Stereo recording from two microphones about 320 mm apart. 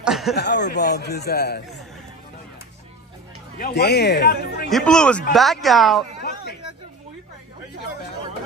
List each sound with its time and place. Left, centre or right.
0.0 s chuckle: centre
0.4 s a man's voice: left
3.5 s a man's voice: left
4.6 s speech: centre